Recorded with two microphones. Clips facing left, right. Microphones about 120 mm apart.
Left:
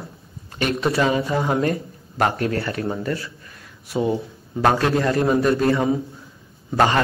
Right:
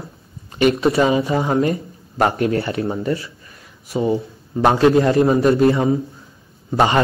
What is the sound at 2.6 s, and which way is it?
Speech, 25° right (ahead or behind).